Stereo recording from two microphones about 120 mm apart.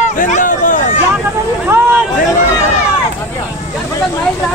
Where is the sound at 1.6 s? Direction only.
15° right (ahead or behind).